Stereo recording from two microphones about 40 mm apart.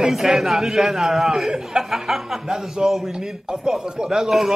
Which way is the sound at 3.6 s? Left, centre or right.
Centre.